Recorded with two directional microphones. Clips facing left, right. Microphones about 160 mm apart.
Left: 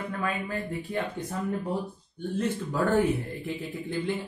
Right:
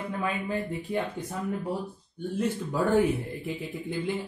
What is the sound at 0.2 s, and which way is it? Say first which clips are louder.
Speech: right 2 dB; 15° right (ahead or behind).